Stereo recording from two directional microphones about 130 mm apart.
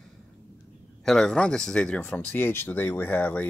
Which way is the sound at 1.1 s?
5° left (ahead or behind).